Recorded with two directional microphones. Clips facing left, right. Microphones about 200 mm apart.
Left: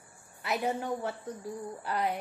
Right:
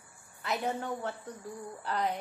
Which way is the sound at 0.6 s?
15° left (ahead or behind).